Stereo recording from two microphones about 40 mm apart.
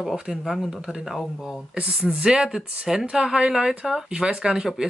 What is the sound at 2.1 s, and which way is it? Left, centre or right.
Speech, right.